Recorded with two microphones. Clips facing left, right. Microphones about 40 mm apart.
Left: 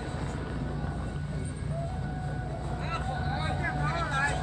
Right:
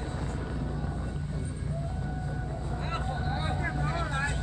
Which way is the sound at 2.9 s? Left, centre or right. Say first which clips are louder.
Even; centre.